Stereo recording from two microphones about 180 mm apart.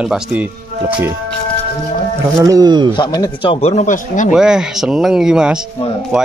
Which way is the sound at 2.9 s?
20° left (ahead or behind).